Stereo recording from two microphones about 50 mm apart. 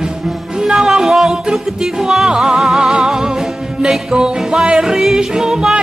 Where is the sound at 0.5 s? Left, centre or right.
Centre.